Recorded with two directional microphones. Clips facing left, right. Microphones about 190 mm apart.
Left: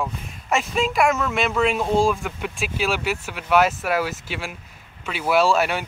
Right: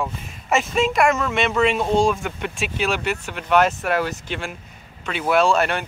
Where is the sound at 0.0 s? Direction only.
Centre (ahead or behind).